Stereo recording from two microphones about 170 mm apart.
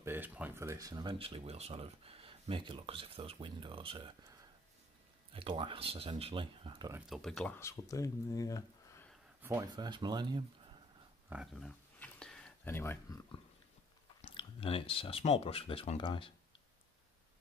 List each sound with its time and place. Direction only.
0.0 s speech: 10° right (ahead or behind); by 4.3 s 30° right (ahead or behind)
5.3 s speech: 30° right (ahead or behind)
7.1 s speech: centre (ahead or behind)
7.5 s speech: 20° left (ahead or behind)
9.4 s speech: 20° right (ahead or behind)
11.2 s speech: 5° right (ahead or behind)
12.0 s a sound: 5° left (ahead or behind)
14.3 s speech: 30° left (ahead or behind)